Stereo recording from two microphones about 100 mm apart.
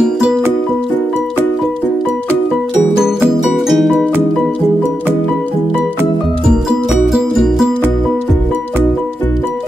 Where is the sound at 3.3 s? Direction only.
5° right (ahead or behind).